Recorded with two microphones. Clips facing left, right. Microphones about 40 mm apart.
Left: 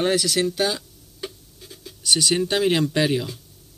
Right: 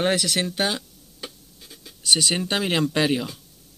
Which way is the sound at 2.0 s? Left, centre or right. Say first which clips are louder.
Even; right.